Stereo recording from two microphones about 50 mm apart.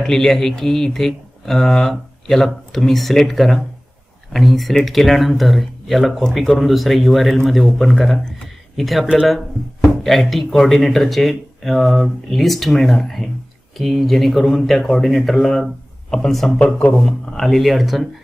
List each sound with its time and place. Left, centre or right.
0.0 s speech: centre
16.5 s speech: left
16.9 s speech: centre